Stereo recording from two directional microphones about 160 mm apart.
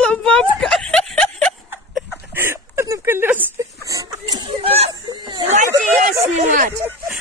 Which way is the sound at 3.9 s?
20° right (ahead or behind).